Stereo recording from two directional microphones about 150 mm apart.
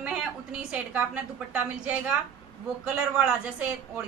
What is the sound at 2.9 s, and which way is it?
Speech, 10° right (ahead or behind).